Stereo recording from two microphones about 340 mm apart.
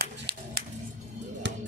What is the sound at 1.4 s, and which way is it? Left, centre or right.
Music, right.